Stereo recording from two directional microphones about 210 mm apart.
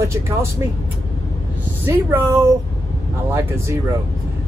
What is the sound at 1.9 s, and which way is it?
Speech, 10° right (ahead or behind).